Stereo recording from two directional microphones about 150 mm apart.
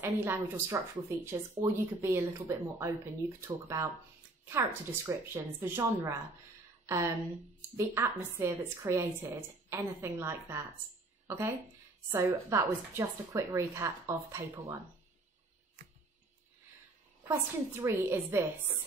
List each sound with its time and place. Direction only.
0.0 s a woman's voice: 15° right (ahead or behind)
17.3 s a woman's voice: 15° right (ahead or behind)